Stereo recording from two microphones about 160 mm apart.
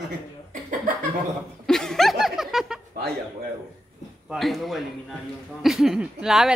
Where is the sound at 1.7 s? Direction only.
Centre (ahead or behind).